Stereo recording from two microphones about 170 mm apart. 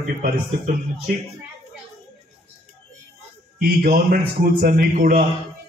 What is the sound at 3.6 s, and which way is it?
A man's voice, 65° right (ahead or behind).